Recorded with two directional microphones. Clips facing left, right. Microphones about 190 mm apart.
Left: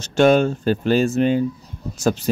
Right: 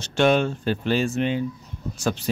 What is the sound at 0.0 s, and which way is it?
Speech, 45° left (ahead or behind).